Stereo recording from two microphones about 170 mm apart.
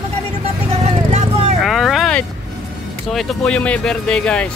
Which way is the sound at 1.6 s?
Centre (ahead or behind).